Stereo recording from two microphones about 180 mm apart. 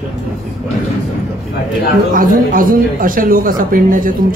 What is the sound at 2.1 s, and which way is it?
Speech, 50° right (ahead or behind).